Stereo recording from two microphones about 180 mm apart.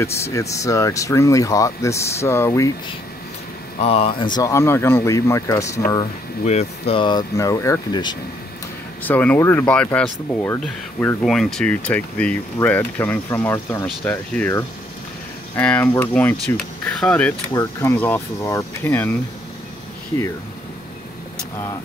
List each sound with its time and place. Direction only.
0.0 s speech: 15° left (ahead or behind)
3.8 s speech: 30° left (ahead or behind); by 5.8 s 15° left (ahead or behind)
6.4 s speech: 40° left (ahead or behind)
9.0 s speech: 10° left (ahead or behind)
17.5 s speech: 15° left (ahead or behind)